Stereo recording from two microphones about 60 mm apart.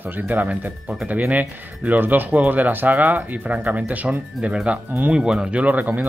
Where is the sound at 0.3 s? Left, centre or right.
Right.